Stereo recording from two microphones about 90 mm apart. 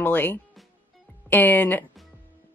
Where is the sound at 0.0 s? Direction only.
20° left (ahead or behind).